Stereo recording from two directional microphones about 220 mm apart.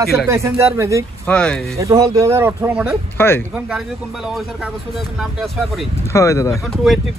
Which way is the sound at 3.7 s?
5° right (ahead or behind).